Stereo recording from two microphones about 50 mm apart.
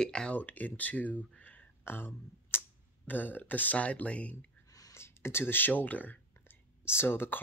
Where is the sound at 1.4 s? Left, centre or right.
Left.